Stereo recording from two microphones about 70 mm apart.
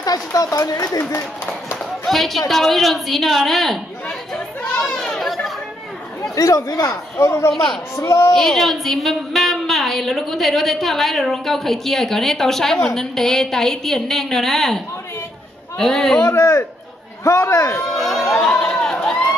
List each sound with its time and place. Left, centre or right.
0.0 s speech: left
2.0 s a woman's voice: centre
4.3 s chatter: centre
6.3 s a man's voice: left
7.2 s a man's voice: left
8.3 s a woman's voice: centre
15.8 s a woman's voice: centre
16.3 s a man's voice: left
17.7 s crowd: centre